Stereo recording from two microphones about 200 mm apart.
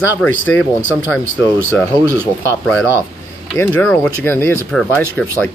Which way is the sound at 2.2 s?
10° left (ahead or behind).